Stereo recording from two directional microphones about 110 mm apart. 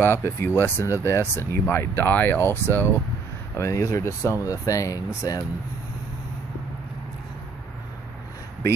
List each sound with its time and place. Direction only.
0.0 s speech: 20° left (ahead or behind)